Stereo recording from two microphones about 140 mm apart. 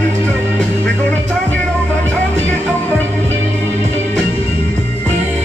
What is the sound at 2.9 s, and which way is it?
Music, 15° left (ahead or behind).